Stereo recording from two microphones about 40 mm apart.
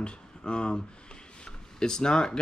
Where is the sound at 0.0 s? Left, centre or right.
Left.